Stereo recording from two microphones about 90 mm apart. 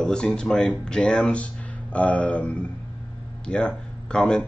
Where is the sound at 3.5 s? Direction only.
10° left (ahead or behind).